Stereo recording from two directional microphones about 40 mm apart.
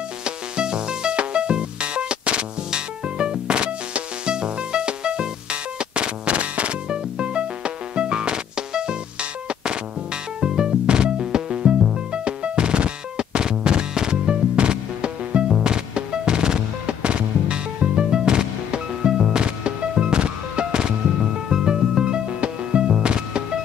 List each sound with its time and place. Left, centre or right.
0.2 s music: right